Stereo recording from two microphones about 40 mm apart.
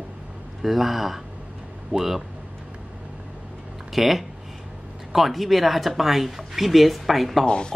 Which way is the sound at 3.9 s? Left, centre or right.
Centre.